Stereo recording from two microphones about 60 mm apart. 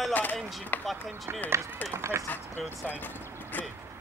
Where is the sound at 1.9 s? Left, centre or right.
Right.